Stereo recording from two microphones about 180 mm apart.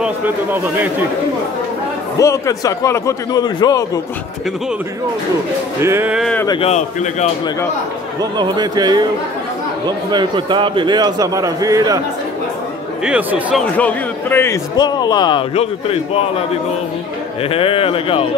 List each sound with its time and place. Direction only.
0.0 s speech: 10° right (ahead or behind)
2.1 s a man's voice: 15° left (ahead or behind)
5.8 s speech: 15° right (ahead or behind)
6.3 s a man's voice: 20° left (ahead or behind)
6.6 s speech: 40° left (ahead or behind)
8.2 s a man's voice: 25° right (ahead or behind)
13.0 s speech: 5° right (ahead or behind)
13.7 s a man's voice: 10° left (ahead or behind); by 18.2 s 30° left (ahead or behind)